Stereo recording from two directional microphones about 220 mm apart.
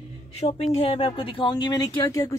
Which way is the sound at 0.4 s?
30° left (ahead or behind).